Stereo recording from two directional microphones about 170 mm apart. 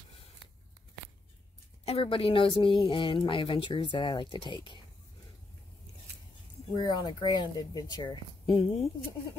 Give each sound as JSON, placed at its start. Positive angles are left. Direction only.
{"t": 1.9, "sound": "a woman's voice", "side_deg": 35}
{"t": 6.7, "sound": "speech", "side_deg": 25}